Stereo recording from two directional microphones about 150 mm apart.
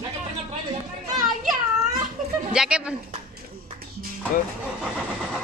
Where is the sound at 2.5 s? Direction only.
5° right (ahead or behind).